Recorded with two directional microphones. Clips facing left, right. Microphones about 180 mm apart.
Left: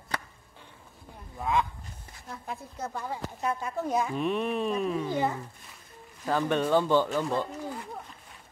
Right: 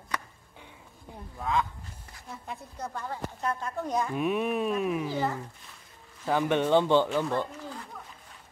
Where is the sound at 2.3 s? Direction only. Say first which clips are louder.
Left 2 dB; centre (ahead or behind).